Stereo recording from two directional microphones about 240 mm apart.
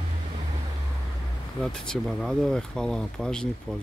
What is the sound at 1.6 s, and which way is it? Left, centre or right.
Speech, centre.